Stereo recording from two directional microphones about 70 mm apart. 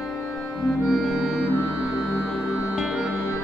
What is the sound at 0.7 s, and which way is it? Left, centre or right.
Music, centre.